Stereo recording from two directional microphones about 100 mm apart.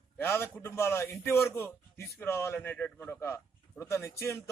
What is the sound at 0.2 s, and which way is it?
A man's voice, 25° left (ahead or behind).